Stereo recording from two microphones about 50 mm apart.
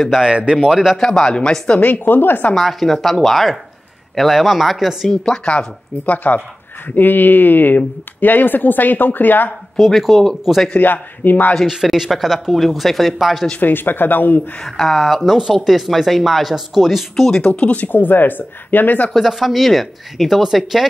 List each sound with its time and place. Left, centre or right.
0.2 s a man's voice: right
0.9 s speech: centre
1.8 s speech: left
2.5 s speech: centre
5.1 s speech: centre
6.0 s speech: left
9.8 s speech: centre
10.8 s speech: left
11.6 s speech: centre
13.6 s speech: left
14.6 s speech: centre
17.4 s speech: left
17.8 s speech: left
19.1 s speech: centre